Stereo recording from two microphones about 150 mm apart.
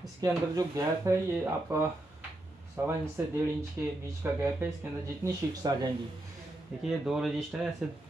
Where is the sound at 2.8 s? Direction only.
20° right (ahead or behind).